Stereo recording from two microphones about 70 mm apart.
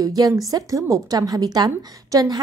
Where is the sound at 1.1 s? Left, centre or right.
Right.